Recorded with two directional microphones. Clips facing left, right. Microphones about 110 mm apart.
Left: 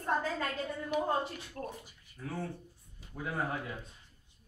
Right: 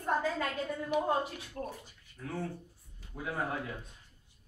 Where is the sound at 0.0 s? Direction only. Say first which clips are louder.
Right 1 dB; 10° right (ahead or behind).